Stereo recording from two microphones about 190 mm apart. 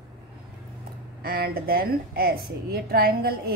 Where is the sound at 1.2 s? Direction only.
55° right (ahead or behind).